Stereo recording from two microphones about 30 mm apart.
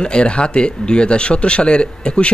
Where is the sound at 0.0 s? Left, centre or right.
Left.